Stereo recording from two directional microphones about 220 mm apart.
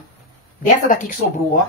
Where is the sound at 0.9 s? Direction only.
35° left (ahead or behind).